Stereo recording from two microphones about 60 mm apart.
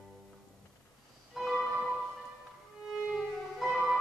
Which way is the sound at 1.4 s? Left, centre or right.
Centre.